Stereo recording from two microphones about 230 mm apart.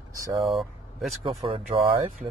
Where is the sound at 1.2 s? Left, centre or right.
Right.